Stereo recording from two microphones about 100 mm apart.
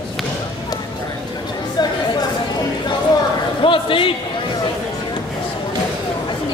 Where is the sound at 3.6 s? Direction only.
60° left (ahead or behind).